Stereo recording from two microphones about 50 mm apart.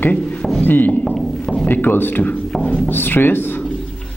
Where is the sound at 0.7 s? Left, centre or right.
Left.